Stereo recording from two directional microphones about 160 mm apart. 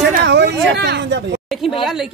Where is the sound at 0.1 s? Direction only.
90° right.